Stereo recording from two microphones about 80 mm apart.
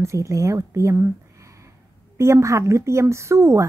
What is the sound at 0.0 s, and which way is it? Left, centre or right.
A woman's voice, right.